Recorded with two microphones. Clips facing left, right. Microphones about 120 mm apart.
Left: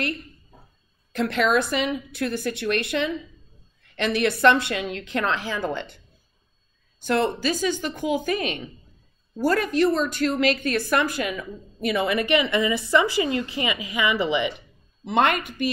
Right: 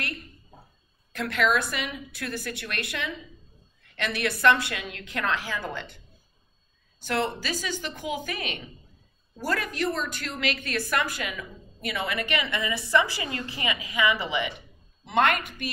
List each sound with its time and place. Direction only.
1.1 s a woman's voice: 30° left (ahead or behind)
7.3 s a woman's voice: 25° left (ahead or behind)